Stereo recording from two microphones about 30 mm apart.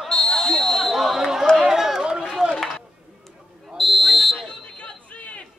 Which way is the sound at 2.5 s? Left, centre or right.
Centre.